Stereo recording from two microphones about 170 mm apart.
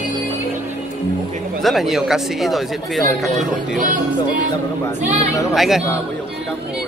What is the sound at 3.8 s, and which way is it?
Music, 50° right (ahead or behind).